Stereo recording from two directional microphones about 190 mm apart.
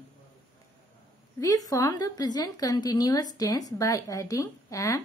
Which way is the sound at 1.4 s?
15° left (ahead or behind).